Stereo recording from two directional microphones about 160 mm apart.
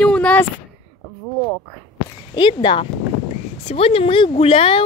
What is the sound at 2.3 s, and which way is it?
Speech, 30° left (ahead or behind).